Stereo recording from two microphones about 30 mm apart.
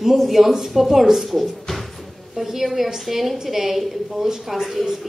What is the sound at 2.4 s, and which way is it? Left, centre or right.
A woman's voice, centre.